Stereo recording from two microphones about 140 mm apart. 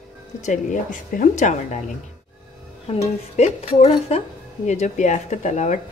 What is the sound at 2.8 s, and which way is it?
A woman's voice, 45° left (ahead or behind).